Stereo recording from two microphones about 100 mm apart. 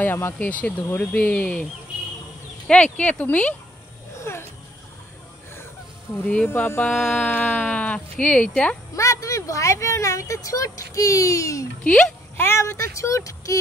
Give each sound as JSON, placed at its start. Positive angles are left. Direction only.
{"t": 0.0, "sound": "speech", "side_deg": 20}
{"t": 2.7, "sound": "speech", "side_deg": 10}
{"t": 4.2, "sound": "a sound", "side_deg": 25}
{"t": 6.2, "sound": "speech", "side_deg": 10}
{"t": 8.9, "sound": "speech", "side_deg": 30}
{"t": 11.8, "sound": "speech", "side_deg": 15}
{"t": 12.4, "sound": "speech", "side_deg": 30}